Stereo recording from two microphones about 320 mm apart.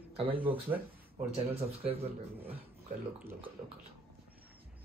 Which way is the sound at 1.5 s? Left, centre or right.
Centre.